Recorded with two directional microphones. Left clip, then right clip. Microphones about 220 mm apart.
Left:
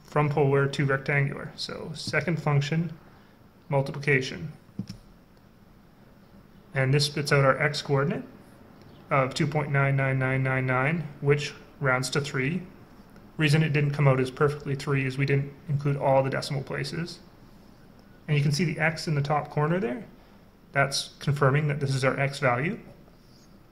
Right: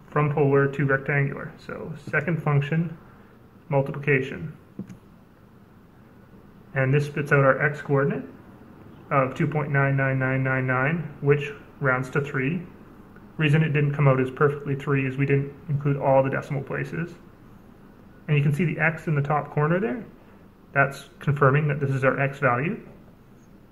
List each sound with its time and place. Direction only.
0.1 s speech: 40° left (ahead or behind)
6.7 s speech: 30° left (ahead or behind)
18.2 s speech: 25° left (ahead or behind)
21.2 s speech: 25° left (ahead or behind)